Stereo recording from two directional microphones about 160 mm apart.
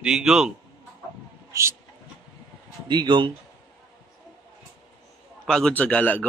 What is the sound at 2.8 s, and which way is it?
Speech, 30° right (ahead or behind).